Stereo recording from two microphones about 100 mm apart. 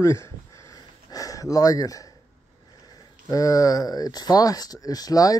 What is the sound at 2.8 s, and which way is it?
Speech, 40° left (ahead or behind).